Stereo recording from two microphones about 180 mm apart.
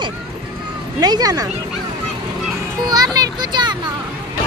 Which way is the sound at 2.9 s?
20° right (ahead or behind).